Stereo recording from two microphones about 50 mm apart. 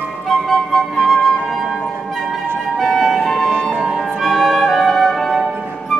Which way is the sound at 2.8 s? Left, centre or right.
Centre.